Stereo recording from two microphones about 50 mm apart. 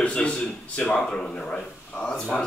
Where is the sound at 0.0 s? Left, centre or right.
Left.